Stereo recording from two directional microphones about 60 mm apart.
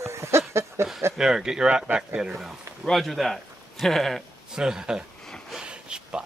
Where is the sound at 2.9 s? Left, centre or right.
Centre.